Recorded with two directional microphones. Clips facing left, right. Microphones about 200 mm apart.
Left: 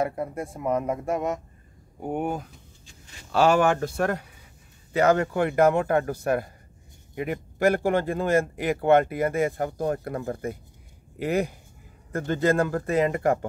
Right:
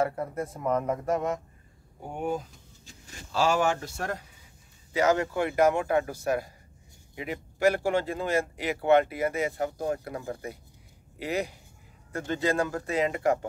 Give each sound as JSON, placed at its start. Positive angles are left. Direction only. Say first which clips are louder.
{"t": 0.0, "sound": "speech", "louder": "left 1 dB", "side_deg": 15}
{"t": 2.0, "sound": "a man's voice", "louder": "left 3 dB", "side_deg": 60}